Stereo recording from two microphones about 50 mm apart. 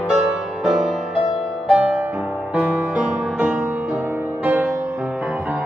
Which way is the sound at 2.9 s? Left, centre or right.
Right.